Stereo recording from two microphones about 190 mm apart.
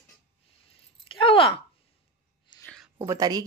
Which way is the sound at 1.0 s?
30° left (ahead or behind).